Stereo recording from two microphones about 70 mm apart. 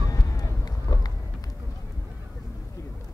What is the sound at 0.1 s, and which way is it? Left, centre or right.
Run, left.